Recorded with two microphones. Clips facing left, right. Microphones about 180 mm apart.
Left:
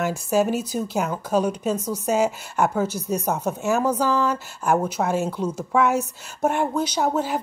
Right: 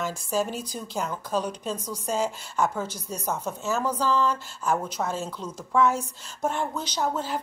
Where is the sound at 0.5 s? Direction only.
5° left (ahead or behind).